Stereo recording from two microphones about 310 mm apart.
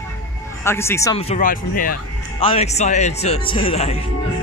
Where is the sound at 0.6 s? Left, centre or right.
Centre.